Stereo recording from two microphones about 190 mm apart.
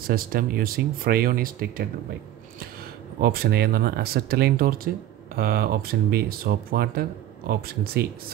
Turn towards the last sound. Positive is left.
turn(degrees=-55)  # may be behind; listen again after turning